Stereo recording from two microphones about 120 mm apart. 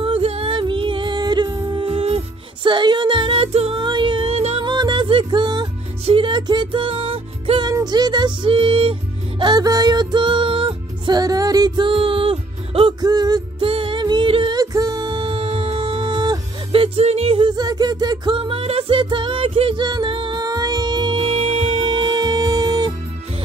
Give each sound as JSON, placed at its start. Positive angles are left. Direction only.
{"t": 0.0, "sound": "music", "side_deg": -55}
{"t": 3.8, "sound": "music", "side_deg": -40}
{"t": 4.6, "sound": "music", "side_deg": -40}
{"t": 7.6, "sound": "music", "side_deg": -35}
{"t": 9.4, "sound": "music", "side_deg": -35}
{"t": 13.0, "sound": "music", "side_deg": -35}
{"t": 13.6, "sound": "music", "side_deg": -50}
{"t": 14.6, "sound": "music", "side_deg": -30}
{"t": 17.5, "sound": "music", "side_deg": -35}